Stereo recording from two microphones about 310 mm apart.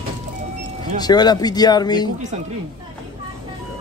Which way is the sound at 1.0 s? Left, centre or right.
Centre.